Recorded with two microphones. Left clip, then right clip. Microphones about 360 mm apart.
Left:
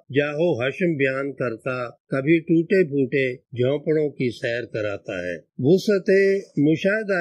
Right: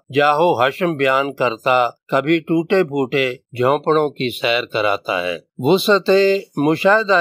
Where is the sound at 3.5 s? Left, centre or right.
Right.